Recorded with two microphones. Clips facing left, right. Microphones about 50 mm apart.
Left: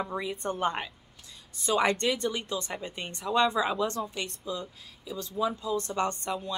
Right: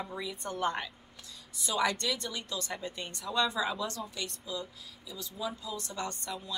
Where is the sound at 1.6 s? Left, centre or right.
Left.